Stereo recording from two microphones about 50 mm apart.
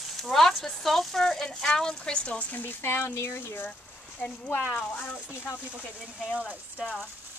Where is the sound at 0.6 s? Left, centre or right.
Centre; by 2.7 s left.